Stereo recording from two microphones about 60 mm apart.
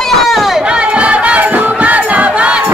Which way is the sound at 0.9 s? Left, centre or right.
Centre.